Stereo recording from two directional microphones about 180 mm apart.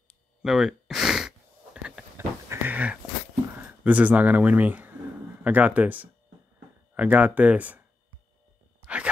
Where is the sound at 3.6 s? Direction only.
10° right (ahead or behind).